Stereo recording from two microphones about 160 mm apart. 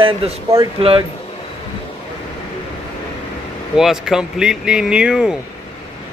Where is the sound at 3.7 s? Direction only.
5° right (ahead or behind).